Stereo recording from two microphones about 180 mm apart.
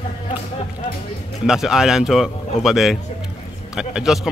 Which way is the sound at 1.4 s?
Centre (ahead or behind).